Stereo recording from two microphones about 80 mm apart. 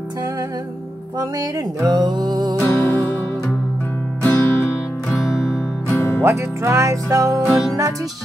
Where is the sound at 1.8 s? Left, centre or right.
Right.